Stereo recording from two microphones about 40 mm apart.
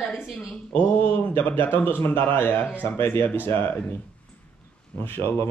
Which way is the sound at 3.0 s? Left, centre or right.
Left.